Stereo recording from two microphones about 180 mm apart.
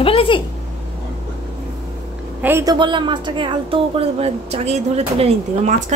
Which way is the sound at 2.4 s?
15° right (ahead or behind).